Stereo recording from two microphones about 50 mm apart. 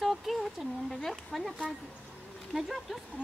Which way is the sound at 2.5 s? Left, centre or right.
Centre.